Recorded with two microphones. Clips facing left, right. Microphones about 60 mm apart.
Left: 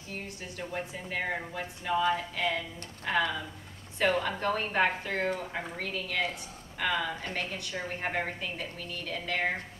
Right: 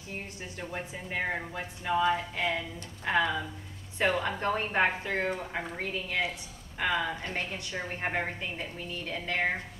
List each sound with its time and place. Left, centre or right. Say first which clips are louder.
0.6 s speech: left 1 dB; centre